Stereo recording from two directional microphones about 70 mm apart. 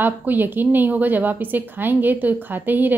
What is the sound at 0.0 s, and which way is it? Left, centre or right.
A woman's voice, right.